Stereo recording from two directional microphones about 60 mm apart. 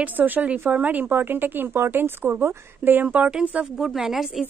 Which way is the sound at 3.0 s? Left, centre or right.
Right.